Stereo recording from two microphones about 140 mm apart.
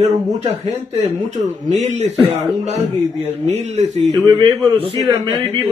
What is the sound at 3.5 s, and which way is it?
Speech, 55° right (ahead or behind).